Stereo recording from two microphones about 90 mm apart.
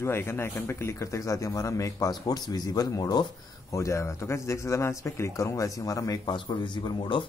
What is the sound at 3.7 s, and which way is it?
A man's voice, 35° left (ahead or behind).